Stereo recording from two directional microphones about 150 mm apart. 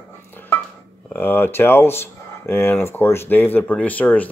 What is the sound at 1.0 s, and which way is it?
Speech, 15° left (ahead or behind).